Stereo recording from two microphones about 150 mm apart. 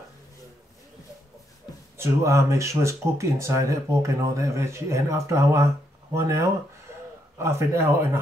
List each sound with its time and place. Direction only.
2.0 s speech: 20° right (ahead or behind)